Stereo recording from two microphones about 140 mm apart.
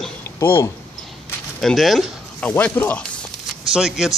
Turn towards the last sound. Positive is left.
turn(degrees=-5)  # may be behind; listen again after turning